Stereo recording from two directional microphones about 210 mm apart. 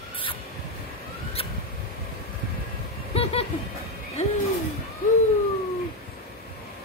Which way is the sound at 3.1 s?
30° left (ahead or behind).